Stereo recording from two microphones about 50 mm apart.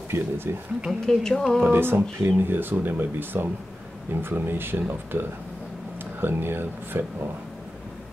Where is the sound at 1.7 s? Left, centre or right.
Right.